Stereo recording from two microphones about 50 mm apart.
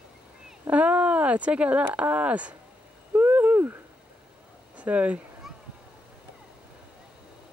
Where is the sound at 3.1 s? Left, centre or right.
Right.